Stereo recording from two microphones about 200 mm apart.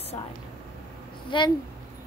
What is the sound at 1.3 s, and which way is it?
Speech, 25° left (ahead or behind).